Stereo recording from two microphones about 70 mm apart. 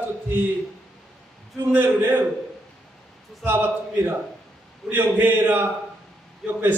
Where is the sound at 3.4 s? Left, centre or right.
Right.